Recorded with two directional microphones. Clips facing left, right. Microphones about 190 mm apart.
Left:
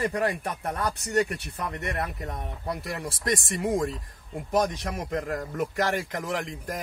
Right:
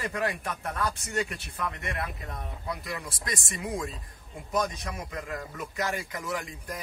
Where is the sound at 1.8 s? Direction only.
40° left (ahead or behind).